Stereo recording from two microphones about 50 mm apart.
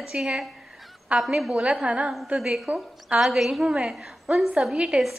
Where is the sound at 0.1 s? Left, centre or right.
Centre.